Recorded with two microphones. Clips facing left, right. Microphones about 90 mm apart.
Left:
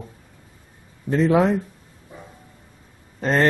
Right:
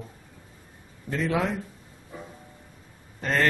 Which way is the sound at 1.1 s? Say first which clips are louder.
Left 9 dB; 25° left (ahead or behind).